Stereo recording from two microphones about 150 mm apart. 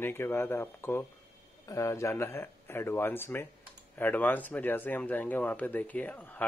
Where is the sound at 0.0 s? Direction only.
15° left (ahead or behind).